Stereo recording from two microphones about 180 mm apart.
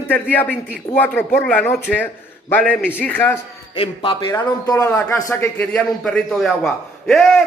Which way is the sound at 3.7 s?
30° left (ahead or behind).